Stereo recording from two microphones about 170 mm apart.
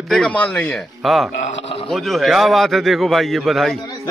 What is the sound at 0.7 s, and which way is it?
A man's voice, centre (ahead or behind).